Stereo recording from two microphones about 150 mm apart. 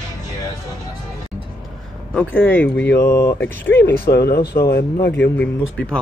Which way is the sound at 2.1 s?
10° left (ahead or behind).